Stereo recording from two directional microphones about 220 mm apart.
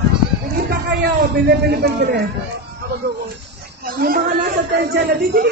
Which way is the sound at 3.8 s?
40° right (ahead or behind).